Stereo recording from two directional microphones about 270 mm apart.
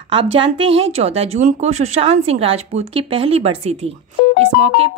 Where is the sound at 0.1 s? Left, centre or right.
Centre.